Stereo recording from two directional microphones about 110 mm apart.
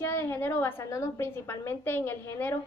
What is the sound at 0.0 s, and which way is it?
A woman's voice, 20° left (ahead or behind).